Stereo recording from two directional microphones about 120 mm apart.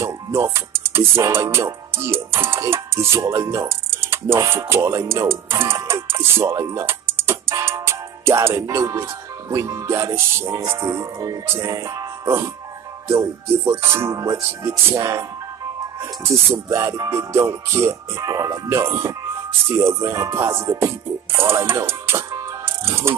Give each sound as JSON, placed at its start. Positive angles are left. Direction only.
{"t": 0.0, "sound": "music", "side_deg": -25}
{"t": 13.1, "sound": "music", "side_deg": -25}
{"t": 16.6, "sound": "music", "side_deg": -25}